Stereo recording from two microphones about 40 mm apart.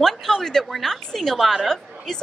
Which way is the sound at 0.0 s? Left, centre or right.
Centre.